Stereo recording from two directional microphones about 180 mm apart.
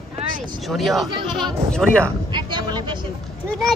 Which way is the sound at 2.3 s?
25° right (ahead or behind).